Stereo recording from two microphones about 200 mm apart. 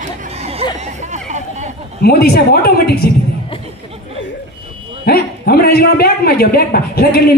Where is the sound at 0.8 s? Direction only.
35° right (ahead or behind).